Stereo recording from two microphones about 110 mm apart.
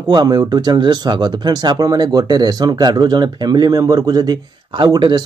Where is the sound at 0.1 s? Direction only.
40° right (ahead or behind).